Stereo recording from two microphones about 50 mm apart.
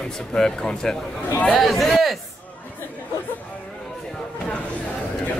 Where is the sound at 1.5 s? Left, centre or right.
Centre.